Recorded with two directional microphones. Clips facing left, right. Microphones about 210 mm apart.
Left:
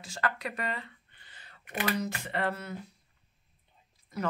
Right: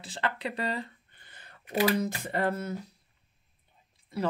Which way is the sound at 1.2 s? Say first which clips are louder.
Right 3 dB; 50° right (ahead or behind).